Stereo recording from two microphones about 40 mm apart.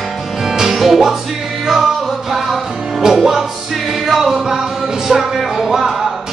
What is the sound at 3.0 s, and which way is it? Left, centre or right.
Music, centre.